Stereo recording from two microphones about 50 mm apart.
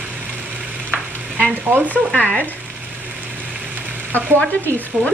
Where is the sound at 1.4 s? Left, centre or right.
Right.